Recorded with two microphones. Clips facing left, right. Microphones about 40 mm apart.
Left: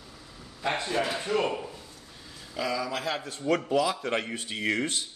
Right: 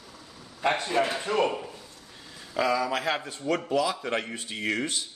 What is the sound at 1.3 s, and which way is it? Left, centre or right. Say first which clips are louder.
Speech: right 1 dB; centre.